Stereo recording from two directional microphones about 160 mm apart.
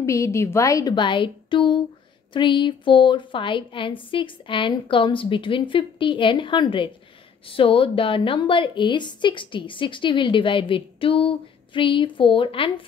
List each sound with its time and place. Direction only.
0.0 s a woman's voice: 20° left (ahead or behind); by 12.8 s 35° left (ahead or behind)